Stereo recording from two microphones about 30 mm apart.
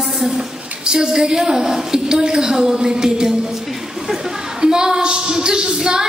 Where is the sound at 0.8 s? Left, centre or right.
Right.